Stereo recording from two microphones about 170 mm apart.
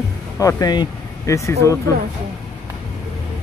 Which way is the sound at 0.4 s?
20° left (ahead or behind).